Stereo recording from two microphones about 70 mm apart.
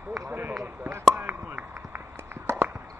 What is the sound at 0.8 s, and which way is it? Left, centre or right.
Chop, right.